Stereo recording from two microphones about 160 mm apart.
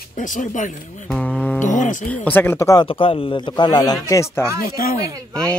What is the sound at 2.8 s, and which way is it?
Speech, 35° left (ahead or behind).